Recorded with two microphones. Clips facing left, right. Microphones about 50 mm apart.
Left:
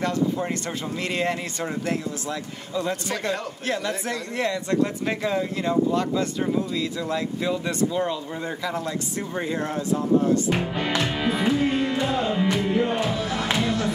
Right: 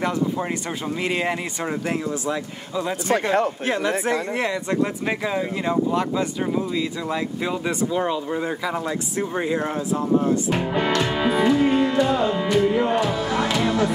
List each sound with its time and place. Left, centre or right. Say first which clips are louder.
0.0 s speech: right 1 dB; centre
3.1 s a man's voice: right 8 dB; right; by 10.9 s centre
11.0 s music: right 4 dB; centre
12.7 s speech: right 3 dB; centre
13.6 s a sound: right 4 dB; centre